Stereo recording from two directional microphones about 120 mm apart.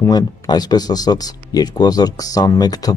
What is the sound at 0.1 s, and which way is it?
Speech, 35° left (ahead or behind).